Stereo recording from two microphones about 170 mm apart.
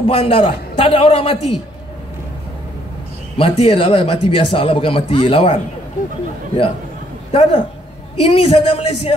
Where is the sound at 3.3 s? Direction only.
35° left (ahead or behind).